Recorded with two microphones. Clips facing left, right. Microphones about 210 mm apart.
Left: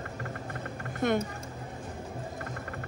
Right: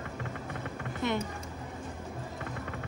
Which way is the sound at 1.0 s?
50° left (ahead or behind).